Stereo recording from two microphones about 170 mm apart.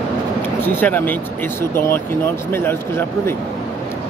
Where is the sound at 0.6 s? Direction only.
10° left (ahead or behind).